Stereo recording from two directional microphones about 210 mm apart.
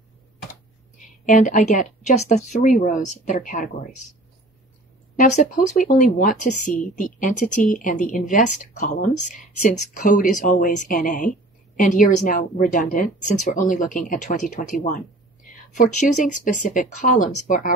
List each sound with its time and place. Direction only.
1.2 s a woman's voice: 40° left (ahead or behind)
5.1 s speech: 35° left (ahead or behind)